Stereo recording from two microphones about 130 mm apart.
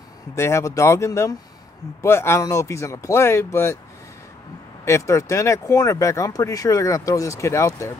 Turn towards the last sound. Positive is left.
turn(degrees=25)  # may be behind; listen again after turning